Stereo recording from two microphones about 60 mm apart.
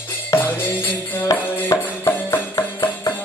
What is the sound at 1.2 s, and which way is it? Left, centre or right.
Music, left.